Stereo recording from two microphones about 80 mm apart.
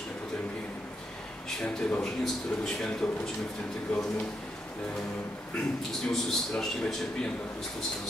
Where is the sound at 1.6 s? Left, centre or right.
Centre.